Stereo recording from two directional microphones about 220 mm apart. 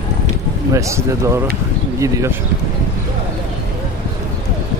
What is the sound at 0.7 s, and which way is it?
Speech, 15° right (ahead or behind).